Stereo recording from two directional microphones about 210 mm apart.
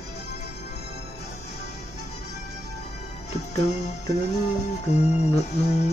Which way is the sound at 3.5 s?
30° left (ahead or behind).